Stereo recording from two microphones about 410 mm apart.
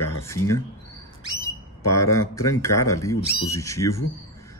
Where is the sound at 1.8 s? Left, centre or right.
Centre.